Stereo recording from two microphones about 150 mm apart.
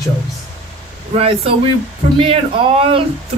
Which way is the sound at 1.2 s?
40° right (ahead or behind).